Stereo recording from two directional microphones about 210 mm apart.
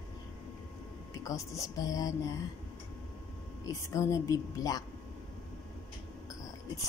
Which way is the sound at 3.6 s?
15° left (ahead or behind).